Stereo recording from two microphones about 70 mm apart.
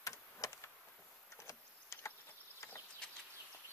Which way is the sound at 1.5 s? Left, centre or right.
Left.